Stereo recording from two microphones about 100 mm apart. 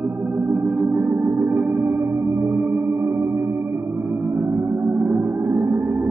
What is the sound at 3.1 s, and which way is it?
Music, 25° right (ahead or behind).